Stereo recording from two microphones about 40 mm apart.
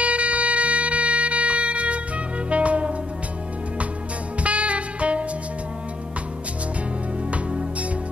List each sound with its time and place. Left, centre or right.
0.0 s music: right
4.4 s music: right